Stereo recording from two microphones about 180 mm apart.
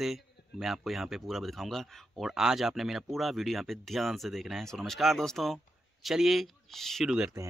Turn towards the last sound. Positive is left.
turn(degrees=0)  # may be behind; listen again after turning